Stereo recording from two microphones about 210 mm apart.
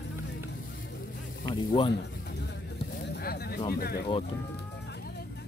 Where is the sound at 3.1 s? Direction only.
50° left (ahead or behind).